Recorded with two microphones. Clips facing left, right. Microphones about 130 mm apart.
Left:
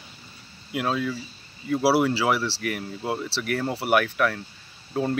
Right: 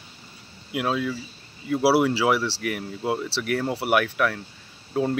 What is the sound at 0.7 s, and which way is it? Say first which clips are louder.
Speech: right 1 dB; 5° right (ahead or behind).